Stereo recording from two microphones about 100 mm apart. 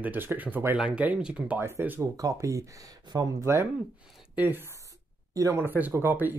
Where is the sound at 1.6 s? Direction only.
25° right (ahead or behind).